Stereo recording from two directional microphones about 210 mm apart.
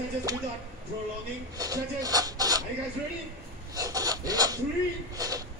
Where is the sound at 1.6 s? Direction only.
15° right (ahead or behind).